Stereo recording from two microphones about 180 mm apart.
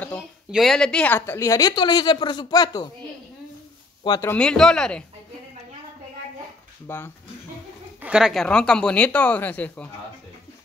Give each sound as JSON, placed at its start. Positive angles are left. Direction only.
{"t": 0.5, "sound": "speech", "side_deg": 0}
{"t": 4.0, "sound": "speech", "side_deg": 20}
{"t": 4.3, "sound": "speech", "side_deg": 5}
{"t": 6.9, "sound": "speech", "side_deg": 10}
{"t": 8.0, "sound": "speech", "side_deg": -5}